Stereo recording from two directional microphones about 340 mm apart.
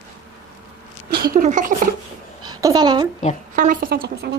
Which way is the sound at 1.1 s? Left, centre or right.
Right.